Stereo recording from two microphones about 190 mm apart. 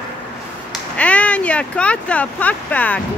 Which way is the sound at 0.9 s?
5° left (ahead or behind).